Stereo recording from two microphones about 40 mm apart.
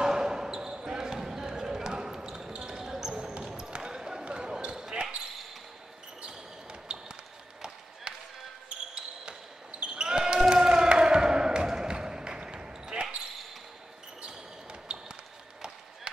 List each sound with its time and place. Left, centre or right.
0.0 s basketball bounce: centre
6.2 s basketball bounce: right
8.9 s basketball bounce: right
10.5 s a sound: centre
14.2 s basketball bounce: right